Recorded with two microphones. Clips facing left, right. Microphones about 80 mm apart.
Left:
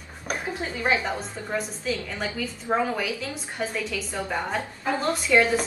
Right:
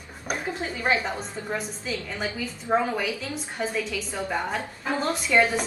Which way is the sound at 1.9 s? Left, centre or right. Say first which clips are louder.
Left 3 dB; centre.